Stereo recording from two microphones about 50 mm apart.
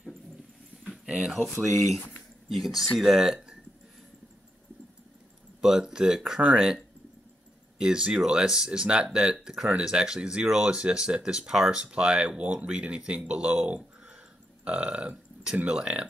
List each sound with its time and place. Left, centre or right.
0.8 s a sound: centre
1.3 s speech: centre
5.6 s speech: centre
7.8 s speech: centre